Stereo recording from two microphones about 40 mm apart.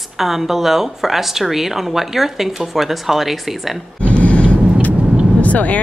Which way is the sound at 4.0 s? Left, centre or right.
Left.